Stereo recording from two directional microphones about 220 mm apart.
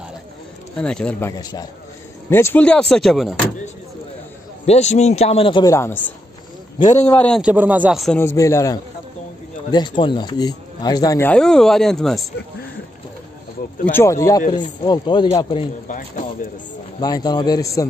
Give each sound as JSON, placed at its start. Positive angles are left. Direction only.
{"t": 0.7, "sound": "speech", "side_deg": 5}
{"t": 1.4, "sound": "speech", "side_deg": 15}
{"t": 4.6, "sound": "a man's voice", "side_deg": 30}
{"t": 6.8, "sound": "speech", "side_deg": 35}
{"t": 7.1, "sound": "speech", "side_deg": 5}
{"t": 7.4, "sound": "speech", "side_deg": -10}
{"t": 8.2, "sound": "speech", "side_deg": 10}
{"t": 13.9, "sound": "a man's voice", "side_deg": 15}
{"t": 17.0, "sound": "speech", "side_deg": 15}